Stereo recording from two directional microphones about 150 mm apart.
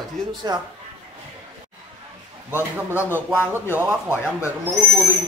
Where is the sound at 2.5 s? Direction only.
15° right (ahead or behind).